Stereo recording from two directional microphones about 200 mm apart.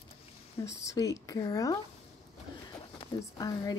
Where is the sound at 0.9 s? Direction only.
20° left (ahead or behind).